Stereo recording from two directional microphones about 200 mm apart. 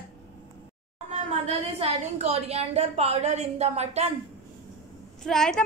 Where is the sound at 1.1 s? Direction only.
30° right (ahead or behind).